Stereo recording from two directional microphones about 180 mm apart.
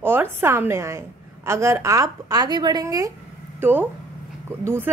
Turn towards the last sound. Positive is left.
turn(degrees=-10)  # may be behind; listen again after turning